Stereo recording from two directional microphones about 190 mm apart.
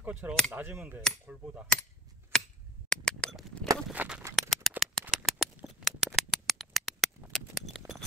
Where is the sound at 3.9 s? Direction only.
10° right (ahead or behind).